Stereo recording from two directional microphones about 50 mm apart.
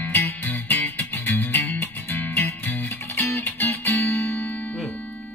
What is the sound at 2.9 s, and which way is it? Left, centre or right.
Music, left.